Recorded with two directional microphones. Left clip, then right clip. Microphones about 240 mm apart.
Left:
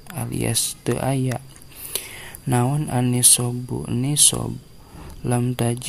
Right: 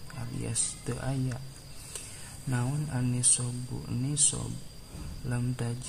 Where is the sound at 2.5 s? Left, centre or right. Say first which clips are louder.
Left 13 dB; left.